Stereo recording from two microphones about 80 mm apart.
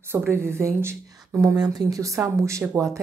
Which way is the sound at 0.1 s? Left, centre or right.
Right.